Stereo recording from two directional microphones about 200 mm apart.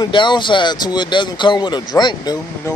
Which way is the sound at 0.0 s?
25° left (ahead or behind).